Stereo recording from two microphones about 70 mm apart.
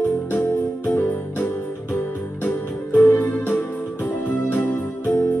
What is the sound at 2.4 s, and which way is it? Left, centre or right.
Music, left.